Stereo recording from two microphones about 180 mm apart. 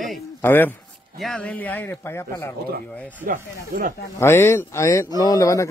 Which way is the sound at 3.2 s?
50° right (ahead or behind).